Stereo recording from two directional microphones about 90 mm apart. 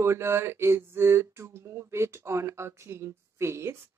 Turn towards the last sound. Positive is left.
turn(degrees=-30)  # may be behind; listen again after turning